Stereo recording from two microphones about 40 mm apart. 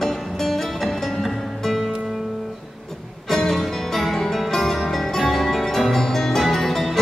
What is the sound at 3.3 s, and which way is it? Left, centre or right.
Music, centre.